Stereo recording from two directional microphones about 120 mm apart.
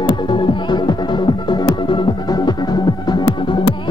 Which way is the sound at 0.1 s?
40° left (ahead or behind).